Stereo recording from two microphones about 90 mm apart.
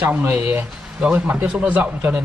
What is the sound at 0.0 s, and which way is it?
Speech, 25° right (ahead or behind).